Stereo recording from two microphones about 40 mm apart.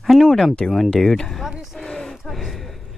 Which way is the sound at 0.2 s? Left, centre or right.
Centre.